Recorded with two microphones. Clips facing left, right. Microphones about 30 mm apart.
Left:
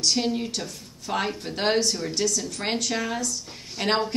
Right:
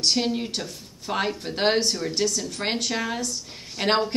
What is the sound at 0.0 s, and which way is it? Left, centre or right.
A woman's voice, centre.